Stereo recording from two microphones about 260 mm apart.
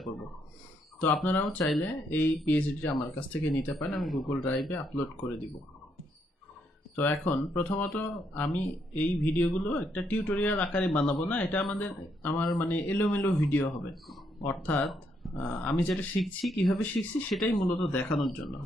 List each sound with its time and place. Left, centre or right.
1.0 s speech: centre
7.0 s speech: centre